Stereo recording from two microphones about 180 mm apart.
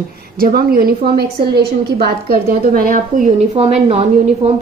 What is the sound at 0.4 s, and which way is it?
A woman's voice, 55° right (ahead or behind).